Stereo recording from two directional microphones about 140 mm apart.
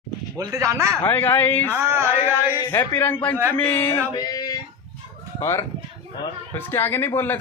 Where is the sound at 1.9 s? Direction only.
15° right (ahead or behind).